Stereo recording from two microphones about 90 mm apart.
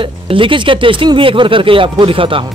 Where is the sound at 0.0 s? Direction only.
75° right (ahead or behind).